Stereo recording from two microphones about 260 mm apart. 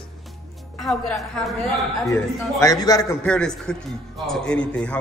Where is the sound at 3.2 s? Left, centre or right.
Centre.